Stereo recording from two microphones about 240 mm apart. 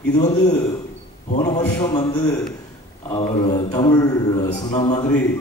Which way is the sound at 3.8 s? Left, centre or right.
Centre.